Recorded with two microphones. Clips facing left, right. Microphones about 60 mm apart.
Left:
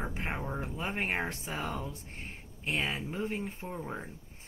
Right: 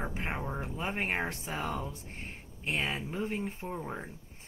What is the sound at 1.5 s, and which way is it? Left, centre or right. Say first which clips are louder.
Speech: right 1 dB; right.